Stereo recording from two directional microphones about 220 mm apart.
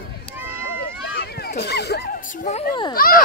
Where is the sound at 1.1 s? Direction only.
50° left (ahead or behind).